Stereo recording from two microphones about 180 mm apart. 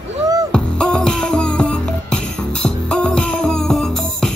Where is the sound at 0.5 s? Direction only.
5° left (ahead or behind).